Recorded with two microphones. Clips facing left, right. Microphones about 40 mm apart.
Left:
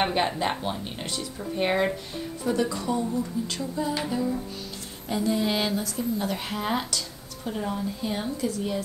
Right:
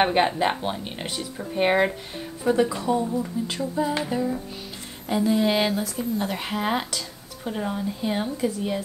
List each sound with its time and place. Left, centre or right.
0.0 s speech: right
5.0 s a woman's voice: centre